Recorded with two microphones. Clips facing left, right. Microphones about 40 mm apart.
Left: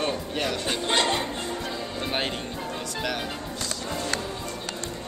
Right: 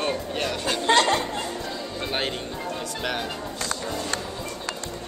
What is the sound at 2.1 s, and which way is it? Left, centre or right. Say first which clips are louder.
Speech: right 1 dB; centre.